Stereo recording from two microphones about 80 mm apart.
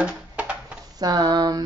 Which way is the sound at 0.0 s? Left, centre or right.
Centre.